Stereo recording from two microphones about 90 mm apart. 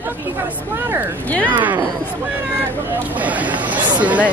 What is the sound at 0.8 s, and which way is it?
Speech, 20° right (ahead or behind).